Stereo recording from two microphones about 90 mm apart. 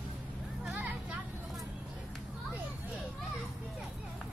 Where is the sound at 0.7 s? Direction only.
20° right (ahead or behind).